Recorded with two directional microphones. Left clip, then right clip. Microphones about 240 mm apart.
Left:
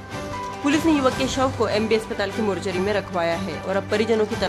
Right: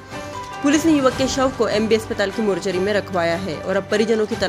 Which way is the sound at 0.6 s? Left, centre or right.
Centre.